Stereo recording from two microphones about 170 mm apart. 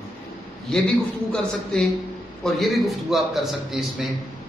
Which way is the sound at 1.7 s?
5° left (ahead or behind).